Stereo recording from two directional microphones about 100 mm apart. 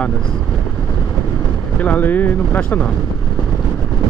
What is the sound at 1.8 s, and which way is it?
Speech, 15° left (ahead or behind).